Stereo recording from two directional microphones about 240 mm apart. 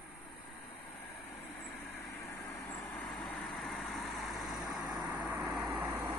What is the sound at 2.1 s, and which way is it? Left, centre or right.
Vehicle, centre.